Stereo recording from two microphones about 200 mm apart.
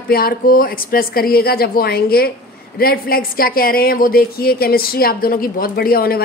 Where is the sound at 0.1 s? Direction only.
50° left (ahead or behind).